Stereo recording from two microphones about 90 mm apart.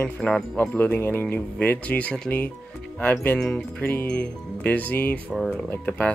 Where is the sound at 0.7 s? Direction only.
25° left (ahead or behind).